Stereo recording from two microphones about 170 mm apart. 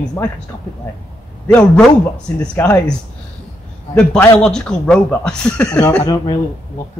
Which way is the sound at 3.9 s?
5° left (ahead or behind).